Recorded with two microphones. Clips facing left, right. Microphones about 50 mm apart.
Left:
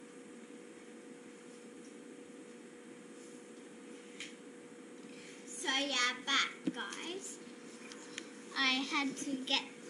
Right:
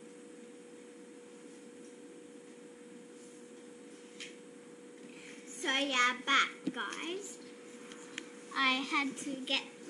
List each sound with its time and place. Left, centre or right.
5.6 s a woman's voice: right
8.2 s a child's voice: centre